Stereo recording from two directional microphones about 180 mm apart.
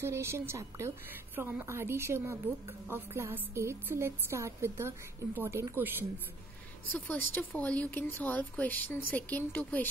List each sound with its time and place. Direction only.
0.0 s a woman's voice: 15° right (ahead or behind)
7.3 s speech: 10° left (ahead or behind)